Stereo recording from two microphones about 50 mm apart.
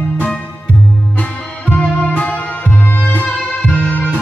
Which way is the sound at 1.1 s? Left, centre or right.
Left.